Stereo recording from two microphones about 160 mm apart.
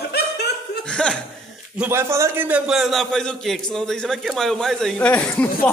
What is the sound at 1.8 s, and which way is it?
A man's voice, 15° right (ahead or behind).